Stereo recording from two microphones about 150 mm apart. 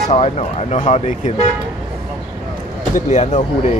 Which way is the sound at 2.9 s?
50° left (ahead or behind).